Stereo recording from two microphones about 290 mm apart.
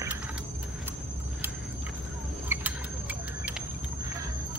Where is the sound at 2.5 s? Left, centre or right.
Centre.